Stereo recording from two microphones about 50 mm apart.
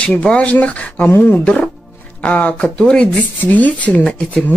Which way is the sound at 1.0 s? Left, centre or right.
Left.